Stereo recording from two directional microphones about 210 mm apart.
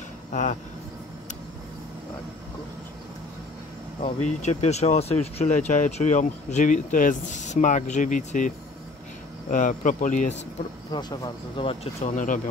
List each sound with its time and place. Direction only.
0.3 s speech: 35° left (ahead or behind)
4.4 s speech: 30° left (ahead or behind)
10.9 s speech: 20° left (ahead or behind); by 12.4 s 35° left (ahead or behind)